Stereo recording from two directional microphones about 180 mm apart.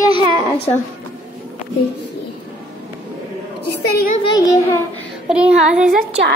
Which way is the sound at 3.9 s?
60° left (ahead or behind).